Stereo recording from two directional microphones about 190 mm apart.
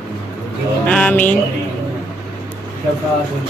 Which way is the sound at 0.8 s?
5° left (ahead or behind).